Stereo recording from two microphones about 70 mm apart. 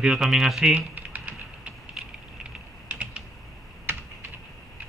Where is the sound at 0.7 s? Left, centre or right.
Right.